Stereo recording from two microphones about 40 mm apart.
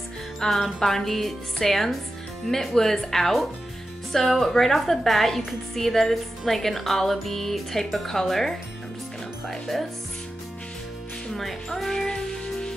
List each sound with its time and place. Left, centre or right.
0.4 s music: centre
0.7 s speech: centre
11.3 s speech: centre
12.1 s music: centre